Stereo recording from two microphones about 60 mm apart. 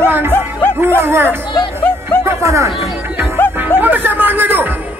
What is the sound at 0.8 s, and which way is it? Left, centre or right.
Chatter, right.